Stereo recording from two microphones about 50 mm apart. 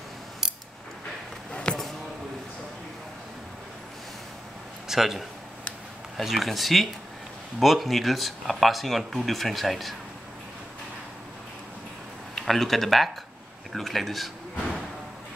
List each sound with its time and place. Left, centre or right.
1.5 s a sound: centre
4.8 s a man's voice: centre
12.4 s speech: centre